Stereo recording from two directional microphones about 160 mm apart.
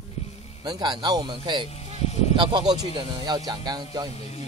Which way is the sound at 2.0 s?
40° left (ahead or behind).